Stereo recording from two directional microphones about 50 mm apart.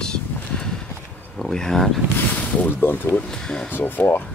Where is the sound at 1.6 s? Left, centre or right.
Centre.